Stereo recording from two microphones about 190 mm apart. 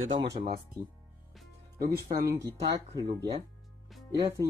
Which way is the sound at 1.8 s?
50° right (ahead or behind).